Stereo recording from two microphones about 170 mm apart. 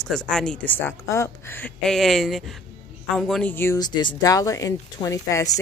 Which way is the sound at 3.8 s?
25° left (ahead or behind).